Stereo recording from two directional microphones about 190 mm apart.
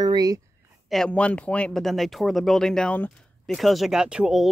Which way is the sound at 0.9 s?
5° left (ahead or behind).